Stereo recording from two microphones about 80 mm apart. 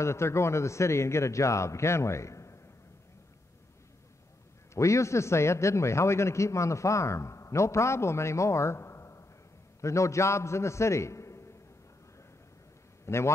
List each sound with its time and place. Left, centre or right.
0.0 s a man's voice: left
4.7 s a man's voice: left
13.0 s a man's voice: left